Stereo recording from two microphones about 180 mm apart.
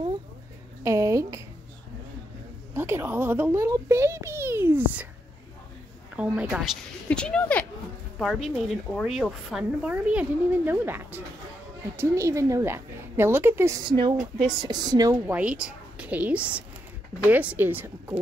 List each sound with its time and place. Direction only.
0.8 s a sound: 15° right (ahead or behind)
2.7 s a child's voice: 15° right (ahead or behind)
6.1 s a woman's voice: 5° right (ahead or behind)
15.3 s a woman's voice: 5° right (ahead or behind)